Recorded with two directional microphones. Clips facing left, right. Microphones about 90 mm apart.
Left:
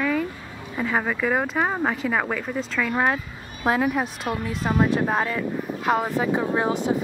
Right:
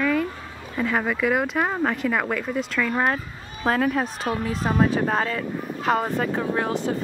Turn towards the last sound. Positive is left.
turn(degrees=20)  # may be behind; listen again after turning